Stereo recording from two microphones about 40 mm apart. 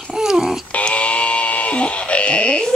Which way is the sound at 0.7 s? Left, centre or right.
Left.